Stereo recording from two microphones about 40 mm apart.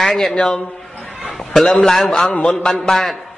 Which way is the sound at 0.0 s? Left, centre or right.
Centre.